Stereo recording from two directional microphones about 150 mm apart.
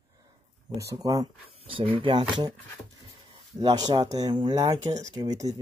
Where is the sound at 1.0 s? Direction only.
25° right (ahead or behind).